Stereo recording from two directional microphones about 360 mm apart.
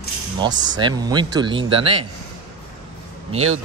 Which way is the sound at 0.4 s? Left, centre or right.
Centre.